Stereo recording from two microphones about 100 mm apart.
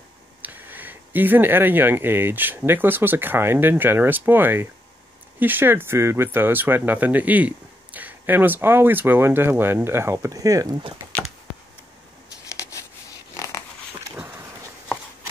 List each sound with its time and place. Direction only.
0.4 s speech: 20° right (ahead or behind); by 10.8 s 35° right (ahead or behind)
13.4 s dog: 30° left (ahead or behind)
14.1 s dog: 20° right (ahead or behind)